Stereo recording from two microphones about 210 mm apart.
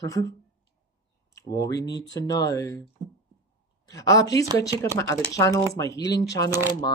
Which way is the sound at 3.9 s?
15° left (ahead or behind).